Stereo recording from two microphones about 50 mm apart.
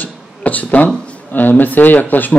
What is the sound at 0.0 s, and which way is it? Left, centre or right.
A man's voice, left.